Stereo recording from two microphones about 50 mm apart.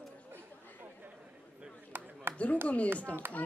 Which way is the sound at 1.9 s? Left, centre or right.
Right.